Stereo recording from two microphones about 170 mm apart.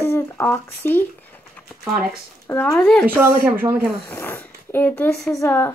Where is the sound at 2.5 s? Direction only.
15° left (ahead or behind).